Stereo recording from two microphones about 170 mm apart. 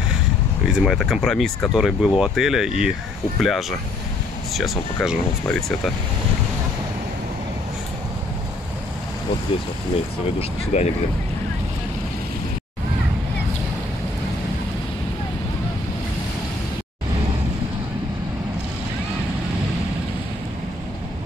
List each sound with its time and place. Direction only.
0.7 s speech: centre (ahead or behind)
10.7 s speech: 40° left (ahead or behind)